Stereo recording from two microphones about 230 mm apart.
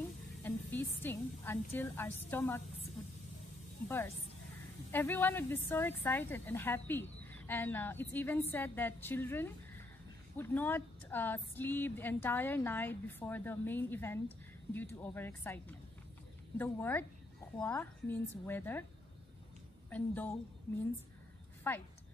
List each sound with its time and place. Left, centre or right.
0.4 s a sound: centre
4.9 s a woman's voice: centre
19.9 s a woman's voice: centre
21.7 s a woman's voice: centre